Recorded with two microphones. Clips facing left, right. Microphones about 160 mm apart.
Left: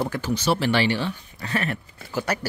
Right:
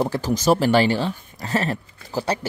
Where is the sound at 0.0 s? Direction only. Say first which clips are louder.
Right 4 dB; 40° right (ahead or behind).